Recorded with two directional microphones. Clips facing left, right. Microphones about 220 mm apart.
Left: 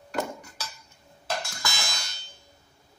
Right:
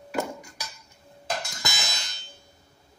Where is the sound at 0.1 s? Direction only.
10° right (ahead or behind).